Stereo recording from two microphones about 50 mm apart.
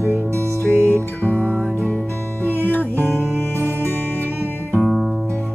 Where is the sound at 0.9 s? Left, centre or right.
Left.